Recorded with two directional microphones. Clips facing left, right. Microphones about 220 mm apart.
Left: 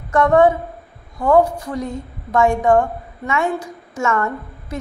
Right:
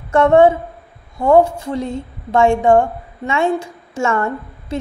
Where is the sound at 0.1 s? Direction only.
25° right (ahead or behind).